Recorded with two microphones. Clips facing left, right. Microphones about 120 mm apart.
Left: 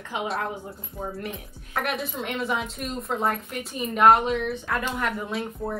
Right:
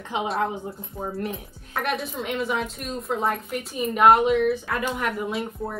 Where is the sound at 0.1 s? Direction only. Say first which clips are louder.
Right 3 dB; 25° right (ahead or behind).